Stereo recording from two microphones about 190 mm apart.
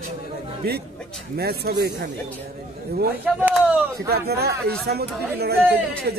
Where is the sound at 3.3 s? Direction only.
10° right (ahead or behind).